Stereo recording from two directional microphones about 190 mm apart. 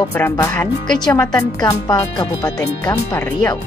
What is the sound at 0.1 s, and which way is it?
Speech, 10° left (ahead or behind).